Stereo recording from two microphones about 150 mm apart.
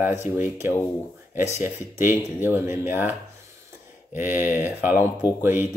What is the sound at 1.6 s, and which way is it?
Speech, 15° right (ahead or behind).